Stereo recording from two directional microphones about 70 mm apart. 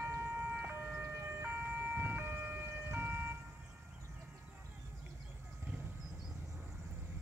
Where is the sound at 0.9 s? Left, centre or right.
Right.